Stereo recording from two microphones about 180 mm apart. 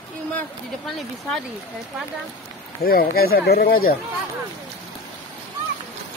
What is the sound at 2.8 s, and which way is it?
Speech, 55° left (ahead or behind).